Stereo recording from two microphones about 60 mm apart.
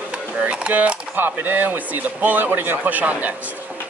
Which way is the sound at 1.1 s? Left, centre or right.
Right.